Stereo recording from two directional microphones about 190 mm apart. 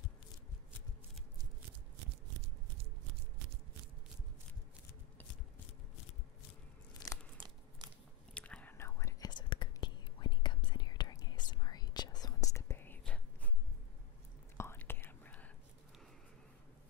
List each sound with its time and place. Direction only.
6.9 s crunch: 20° left (ahead or behind)
7.3 s a sound: 20° right (ahead or behind)
8.4 s whispering: 5° left (ahead or behind)
14.6 s whispering: 10° left (ahead or behind)